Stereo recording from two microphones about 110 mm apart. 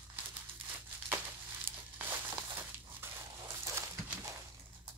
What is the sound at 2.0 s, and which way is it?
Crumpling, 20° right (ahead or behind).